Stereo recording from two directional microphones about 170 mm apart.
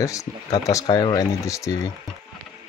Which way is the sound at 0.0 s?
20° left (ahead or behind).